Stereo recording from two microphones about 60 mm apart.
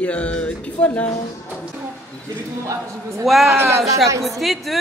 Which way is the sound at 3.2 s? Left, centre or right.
Centre.